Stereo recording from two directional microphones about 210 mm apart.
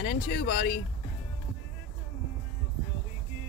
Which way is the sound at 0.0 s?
50° left (ahead or behind).